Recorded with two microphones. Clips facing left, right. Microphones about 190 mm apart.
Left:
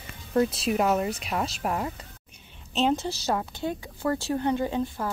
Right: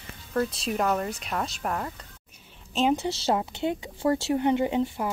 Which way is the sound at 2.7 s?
10° right (ahead or behind).